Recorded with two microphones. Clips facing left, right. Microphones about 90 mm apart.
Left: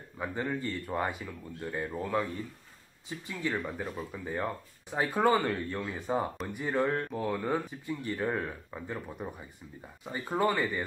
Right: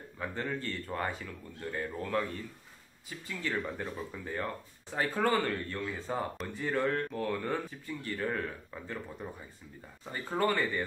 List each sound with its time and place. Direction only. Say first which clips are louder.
0.2 s speech: left 3 dB; 15° left (ahead or behind)
3.1 s speech: left 3 dB; 20° left (ahead or behind)